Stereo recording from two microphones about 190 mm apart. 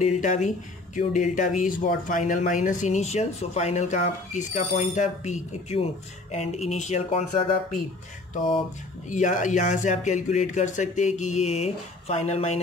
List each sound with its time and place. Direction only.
0.0 s speech: 40° left (ahead or behind)
9.1 s speech: 40° left (ahead or behind)